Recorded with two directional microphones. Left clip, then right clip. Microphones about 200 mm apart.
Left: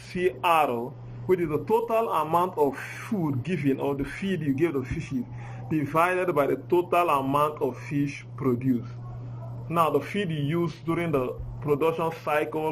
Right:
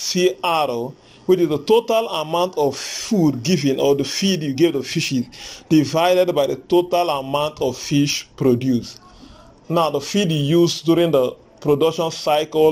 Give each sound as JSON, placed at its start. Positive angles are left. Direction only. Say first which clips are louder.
{"t": 0.1, "sound": "speech", "louder": "right 4 dB", "side_deg": -30}